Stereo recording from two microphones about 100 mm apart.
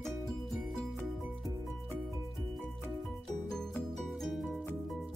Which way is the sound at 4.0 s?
Centre (ahead or behind).